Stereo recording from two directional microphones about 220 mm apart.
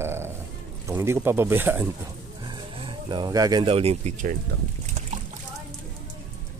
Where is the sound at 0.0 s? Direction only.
10° right (ahead or behind).